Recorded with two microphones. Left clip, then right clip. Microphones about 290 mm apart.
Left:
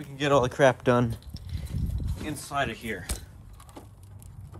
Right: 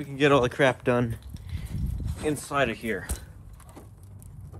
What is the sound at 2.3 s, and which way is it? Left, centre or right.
Speech, centre.